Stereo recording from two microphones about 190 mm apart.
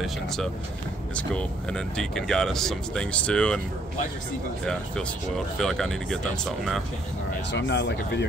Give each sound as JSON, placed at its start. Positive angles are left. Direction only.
{"t": 0.0, "sound": "speech", "side_deg": 0}
{"t": 5.6, "sound": "speech", "side_deg": 0}
{"t": 7.5, "sound": "speech", "side_deg": 70}